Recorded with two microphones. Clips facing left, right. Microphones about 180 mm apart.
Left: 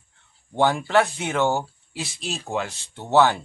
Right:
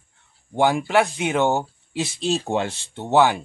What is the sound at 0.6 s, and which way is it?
Speech, 15° right (ahead or behind).